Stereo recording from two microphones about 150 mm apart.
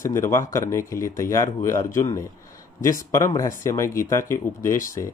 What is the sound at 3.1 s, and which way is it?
Speech, 20° left (ahead or behind).